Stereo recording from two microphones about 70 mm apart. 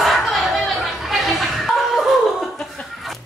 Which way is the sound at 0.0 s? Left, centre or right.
Centre.